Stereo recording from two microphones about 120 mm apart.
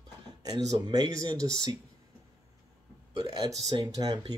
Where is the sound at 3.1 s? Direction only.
35° right (ahead or behind).